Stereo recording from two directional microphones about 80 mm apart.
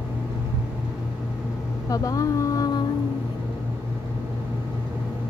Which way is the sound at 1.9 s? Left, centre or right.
Left.